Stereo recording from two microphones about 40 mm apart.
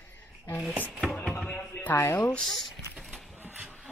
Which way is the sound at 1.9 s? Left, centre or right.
Left.